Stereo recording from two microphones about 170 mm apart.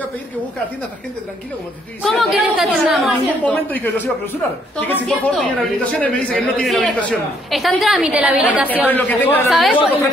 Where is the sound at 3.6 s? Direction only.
10° left (ahead or behind); by 8.7 s 10° right (ahead or behind).